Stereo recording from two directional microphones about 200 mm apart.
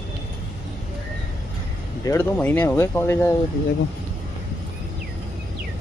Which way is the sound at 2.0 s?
15° left (ahead or behind).